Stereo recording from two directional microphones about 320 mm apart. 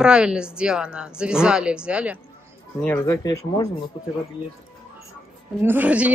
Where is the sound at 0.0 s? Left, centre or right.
Centre.